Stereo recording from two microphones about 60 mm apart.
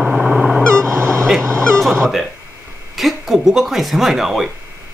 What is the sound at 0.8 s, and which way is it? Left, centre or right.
Goose, right.